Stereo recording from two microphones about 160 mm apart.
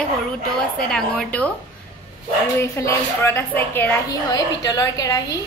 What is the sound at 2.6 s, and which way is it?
A woman's voice, 15° left (ahead or behind).